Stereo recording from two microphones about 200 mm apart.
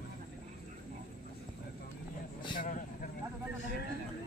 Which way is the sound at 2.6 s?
40° left (ahead or behind).